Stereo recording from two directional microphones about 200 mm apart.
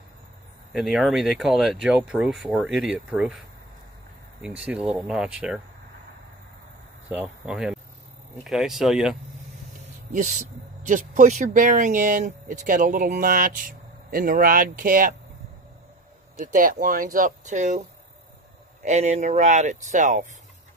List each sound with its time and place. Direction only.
0.7 s speech: centre (ahead or behind)
4.4 s speech: 5° right (ahead or behind)
7.1 s speech: 5° right (ahead or behind)
10.1 s speech: 40° right (ahead or behind)
16.5 s speech: 40° right (ahead or behind)